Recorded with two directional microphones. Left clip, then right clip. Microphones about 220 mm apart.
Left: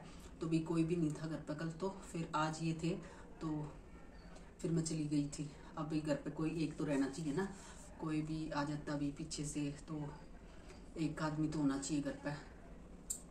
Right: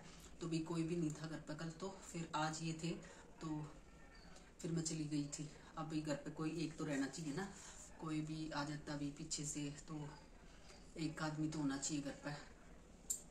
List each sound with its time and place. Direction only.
0.4 s speech: centre (ahead or behind)
4.6 s speech: centre (ahead or behind)
11.0 s speech: centre (ahead or behind)